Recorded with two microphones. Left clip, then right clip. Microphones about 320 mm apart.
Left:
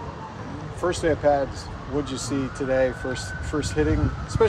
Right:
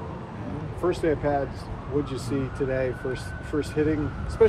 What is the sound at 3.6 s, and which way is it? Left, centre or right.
Speech, left.